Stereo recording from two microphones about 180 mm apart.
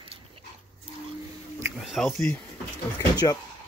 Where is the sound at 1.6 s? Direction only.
Centre (ahead or behind).